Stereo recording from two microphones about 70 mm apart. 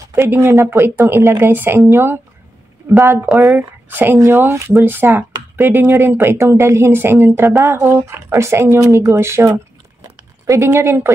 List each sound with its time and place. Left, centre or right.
0.1 s speech: right
1.0 s speech: right
1.4 s speech: right
1.8 s speech: right
3.5 s speech: right
8.7 s a woman's voice: right
10.7 s speech: right